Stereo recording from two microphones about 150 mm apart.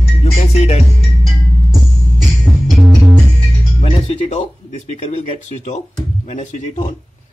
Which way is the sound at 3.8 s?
40° left (ahead or behind).